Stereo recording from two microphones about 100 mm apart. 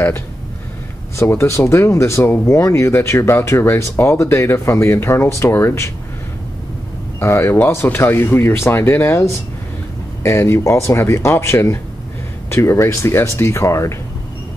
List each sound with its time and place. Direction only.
1.1 s speech: 25° left (ahead or behind)
7.2 s speech: 25° left (ahead or behind)